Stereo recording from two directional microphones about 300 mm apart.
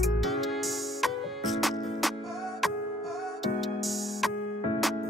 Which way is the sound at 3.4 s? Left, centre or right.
Centre.